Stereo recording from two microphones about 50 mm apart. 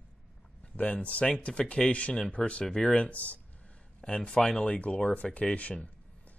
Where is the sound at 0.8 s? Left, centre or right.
Left.